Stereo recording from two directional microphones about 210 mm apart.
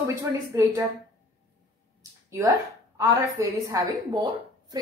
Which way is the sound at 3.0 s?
15° right (ahead or behind).